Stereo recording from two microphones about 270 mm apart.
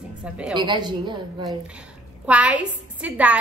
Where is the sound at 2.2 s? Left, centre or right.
Centre.